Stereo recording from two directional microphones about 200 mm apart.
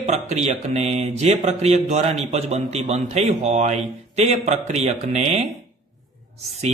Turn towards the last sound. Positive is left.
turn(degrees=-35)  # may be behind; listen again after turning